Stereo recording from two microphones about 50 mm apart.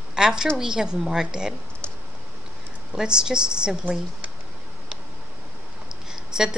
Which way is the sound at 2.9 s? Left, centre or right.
Centre.